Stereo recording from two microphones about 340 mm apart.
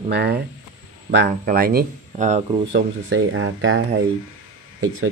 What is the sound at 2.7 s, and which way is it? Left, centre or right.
Speech, right.